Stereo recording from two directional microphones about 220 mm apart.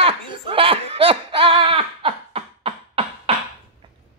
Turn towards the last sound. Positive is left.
turn(degrees=-25)  # may be behind; listen again after turning